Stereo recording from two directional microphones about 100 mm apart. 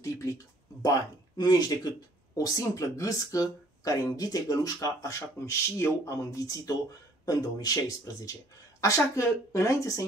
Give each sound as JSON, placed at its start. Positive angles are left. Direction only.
{"t": 0.0, "sound": "speech", "side_deg": 30}